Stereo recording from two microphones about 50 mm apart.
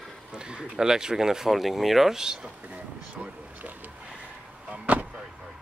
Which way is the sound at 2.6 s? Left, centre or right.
Right.